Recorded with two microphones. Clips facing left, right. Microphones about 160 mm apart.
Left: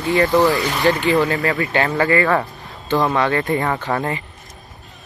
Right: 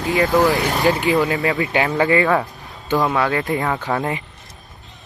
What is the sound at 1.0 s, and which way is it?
Speech, 5° right (ahead or behind).